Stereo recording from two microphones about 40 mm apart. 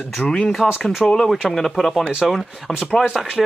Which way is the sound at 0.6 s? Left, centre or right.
Centre.